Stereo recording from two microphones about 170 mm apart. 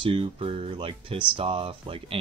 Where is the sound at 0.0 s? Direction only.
30° right (ahead or behind).